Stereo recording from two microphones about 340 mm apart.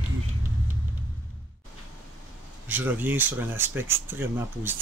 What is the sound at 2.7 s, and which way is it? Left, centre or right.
Speech, centre.